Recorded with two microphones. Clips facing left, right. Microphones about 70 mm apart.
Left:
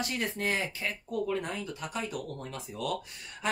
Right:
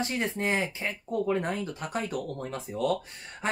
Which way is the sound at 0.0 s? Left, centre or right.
Right.